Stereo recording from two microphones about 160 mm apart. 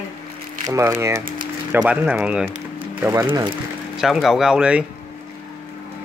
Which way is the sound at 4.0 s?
Centre (ahead or behind).